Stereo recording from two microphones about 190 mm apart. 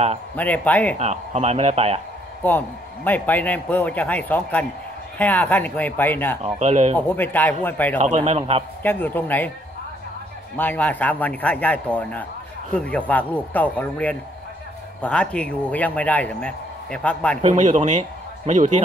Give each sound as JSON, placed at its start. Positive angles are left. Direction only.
{"t": 0.4, "sound": "a man's voice", "side_deg": 10}
{"t": 0.9, "sound": "speech", "side_deg": -35}
{"t": 2.4, "sound": "a man's voice", "side_deg": 10}
{"t": 6.4, "sound": "speech", "side_deg": -35}
{"t": 7.1, "sound": "a man's voice", "side_deg": 10}
{"t": 8.0, "sound": "speech", "side_deg": -35}
{"t": 8.8, "sound": "a man's voice", "side_deg": 10}
{"t": 10.6, "sound": "a man's voice", "side_deg": 10}
{"t": 17.4, "sound": "a man's voice", "side_deg": -40}